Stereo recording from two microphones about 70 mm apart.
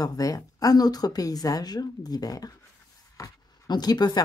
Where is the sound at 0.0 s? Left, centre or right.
Left.